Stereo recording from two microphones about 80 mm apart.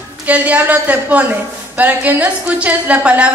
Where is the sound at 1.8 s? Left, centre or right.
Right.